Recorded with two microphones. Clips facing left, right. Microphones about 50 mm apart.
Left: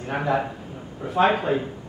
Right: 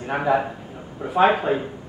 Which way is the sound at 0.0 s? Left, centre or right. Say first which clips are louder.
Right 3 dB; centre.